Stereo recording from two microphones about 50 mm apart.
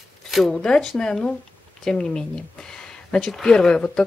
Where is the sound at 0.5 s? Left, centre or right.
Centre.